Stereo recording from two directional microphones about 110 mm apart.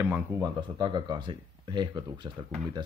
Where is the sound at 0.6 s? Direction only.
45° right (ahead or behind).